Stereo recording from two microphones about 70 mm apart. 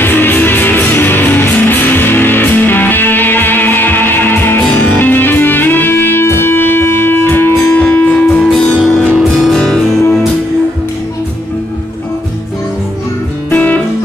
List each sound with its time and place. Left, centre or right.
0.0 s music: left
8.7 s music: centre
13.5 s music: left